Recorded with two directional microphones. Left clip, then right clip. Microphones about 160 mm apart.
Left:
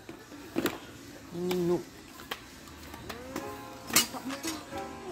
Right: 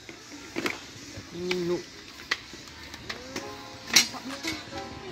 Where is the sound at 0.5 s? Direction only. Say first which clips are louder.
Even; 65° left (ahead or behind).